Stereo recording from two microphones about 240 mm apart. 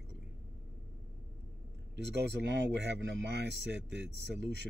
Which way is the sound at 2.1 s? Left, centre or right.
Right.